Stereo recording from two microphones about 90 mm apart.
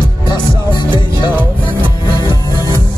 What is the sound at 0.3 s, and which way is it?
Music, 60° left (ahead or behind).